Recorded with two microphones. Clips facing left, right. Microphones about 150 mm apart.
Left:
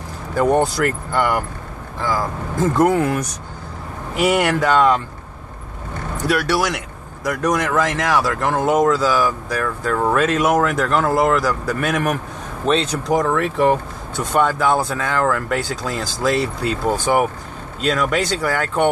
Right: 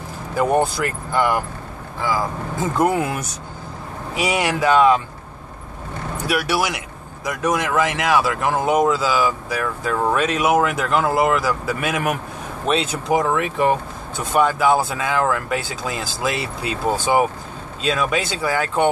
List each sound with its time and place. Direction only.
0.4 s speech: 5° right (ahead or behind)
3.0 s speech: 15° right (ahead or behind)
4.1 s speech: centre (ahead or behind)
6.2 s speech: 10° right (ahead or behind)